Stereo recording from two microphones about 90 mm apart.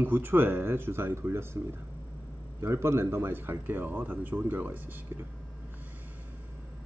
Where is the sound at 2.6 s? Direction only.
30° right (ahead or behind).